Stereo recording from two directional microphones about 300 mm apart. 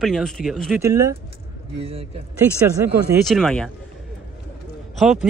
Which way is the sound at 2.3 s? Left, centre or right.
Centre.